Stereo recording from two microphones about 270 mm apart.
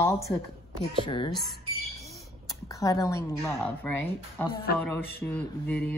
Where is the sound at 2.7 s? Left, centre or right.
Centre.